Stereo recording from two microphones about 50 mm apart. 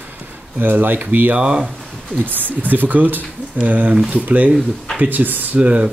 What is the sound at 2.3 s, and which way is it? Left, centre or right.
Speech, right.